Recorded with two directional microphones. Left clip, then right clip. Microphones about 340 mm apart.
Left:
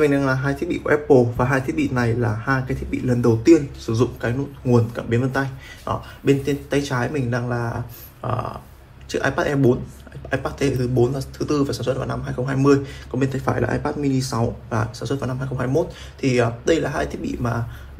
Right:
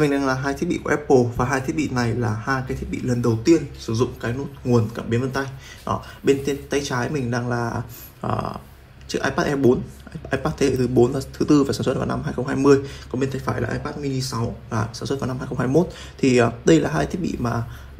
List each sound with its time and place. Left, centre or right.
0.0 s speech: centre